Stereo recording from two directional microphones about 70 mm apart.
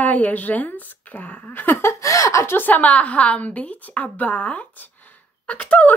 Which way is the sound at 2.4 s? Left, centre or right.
Left.